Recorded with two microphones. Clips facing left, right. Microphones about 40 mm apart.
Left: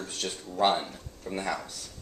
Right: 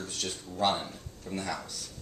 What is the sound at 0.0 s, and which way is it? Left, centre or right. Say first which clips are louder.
Speech: left 2 dB; centre.